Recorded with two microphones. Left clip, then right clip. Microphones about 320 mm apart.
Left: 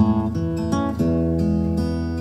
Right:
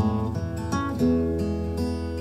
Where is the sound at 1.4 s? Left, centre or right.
Centre.